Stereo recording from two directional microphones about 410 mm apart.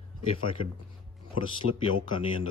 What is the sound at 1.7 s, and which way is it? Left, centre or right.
Speech, right.